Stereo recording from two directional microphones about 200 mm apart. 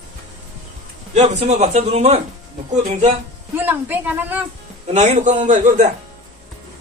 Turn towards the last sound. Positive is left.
turn(degrees=-35)  # may be behind; listen again after turning